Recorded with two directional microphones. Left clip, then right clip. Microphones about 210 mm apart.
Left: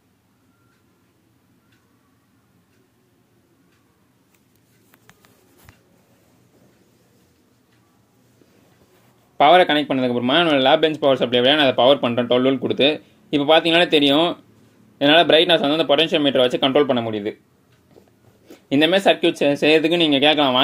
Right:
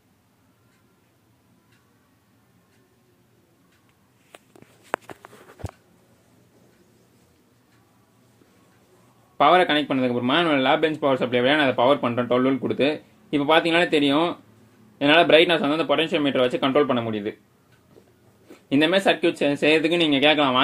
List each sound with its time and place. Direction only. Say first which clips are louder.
9.4 s speech: left 4 dB; 25° left (ahead or behind)
18.5 s speech: left 3 dB; 20° left (ahead or behind)